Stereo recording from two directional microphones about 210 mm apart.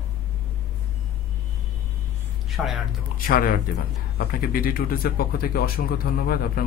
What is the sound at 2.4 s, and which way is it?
Speech, centre (ahead or behind).